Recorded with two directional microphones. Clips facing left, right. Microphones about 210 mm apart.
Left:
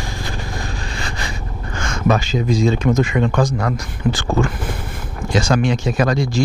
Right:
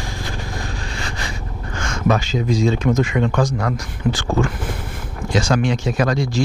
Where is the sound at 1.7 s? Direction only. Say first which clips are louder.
Left 1 dB; 15° left (ahead or behind).